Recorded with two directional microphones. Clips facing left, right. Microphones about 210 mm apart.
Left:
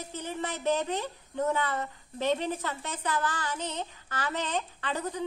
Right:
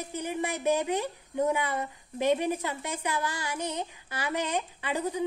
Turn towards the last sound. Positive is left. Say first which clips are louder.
# right 3 dB
turn(degrees=-10)  # may be behind; listen again after turning